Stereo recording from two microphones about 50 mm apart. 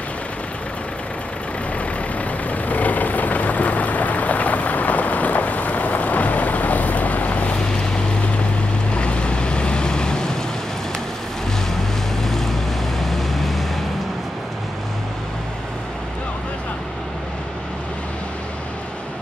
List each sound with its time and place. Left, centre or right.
2.1 s vehicle: left
8.9 s boat: left
12.2 s vehicle: centre